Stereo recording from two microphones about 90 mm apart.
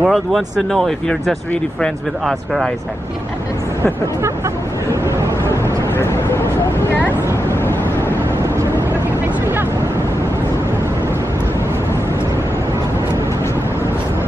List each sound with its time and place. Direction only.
0.0 s speech: centre (ahead or behind)
5.0 s waves: 30° right (ahead or behind)
5.9 s vehicle: 25° left (ahead or behind)